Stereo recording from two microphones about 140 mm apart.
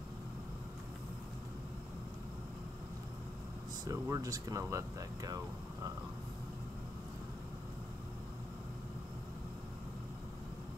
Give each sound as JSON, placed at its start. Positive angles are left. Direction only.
{"t": 3.8, "sound": "speech", "side_deg": -25}